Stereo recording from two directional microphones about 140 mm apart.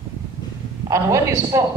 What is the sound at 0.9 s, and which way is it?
Speech, 25° right (ahead or behind).